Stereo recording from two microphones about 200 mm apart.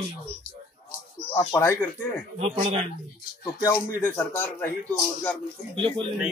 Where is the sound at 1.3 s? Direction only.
10° left (ahead or behind).